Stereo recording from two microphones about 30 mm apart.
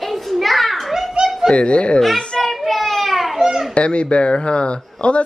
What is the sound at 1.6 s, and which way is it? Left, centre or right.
Speech, left.